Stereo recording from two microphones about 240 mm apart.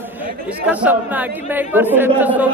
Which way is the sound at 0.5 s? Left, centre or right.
Centre.